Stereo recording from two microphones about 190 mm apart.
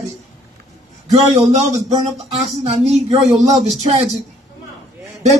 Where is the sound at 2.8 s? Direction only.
30° right (ahead or behind).